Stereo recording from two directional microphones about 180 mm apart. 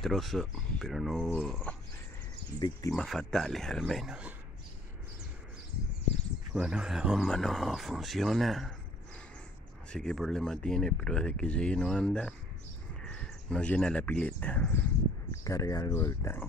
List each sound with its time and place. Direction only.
0.0 s speech: centre (ahead or behind)
2.9 s speech: 5° left (ahead or behind)
6.5 s speech: 5° right (ahead or behind)
9.9 s speech: centre (ahead or behind)